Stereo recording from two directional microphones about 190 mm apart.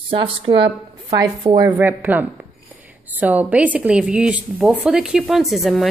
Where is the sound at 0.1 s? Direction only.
25° right (ahead or behind).